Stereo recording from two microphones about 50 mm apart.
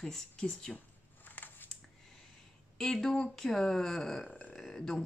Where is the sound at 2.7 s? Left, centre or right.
Centre.